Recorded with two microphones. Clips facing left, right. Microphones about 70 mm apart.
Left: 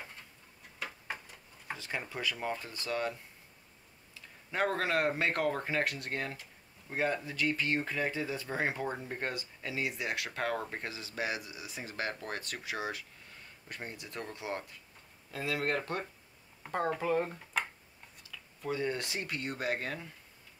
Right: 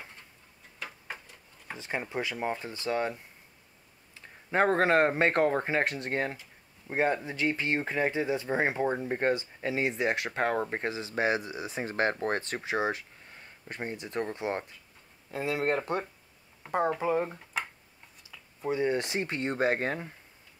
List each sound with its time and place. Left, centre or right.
0.8 s tick-tock: centre
1.8 s speech: right